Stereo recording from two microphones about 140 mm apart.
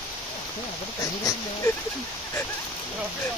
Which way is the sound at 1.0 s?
25° left (ahead or behind).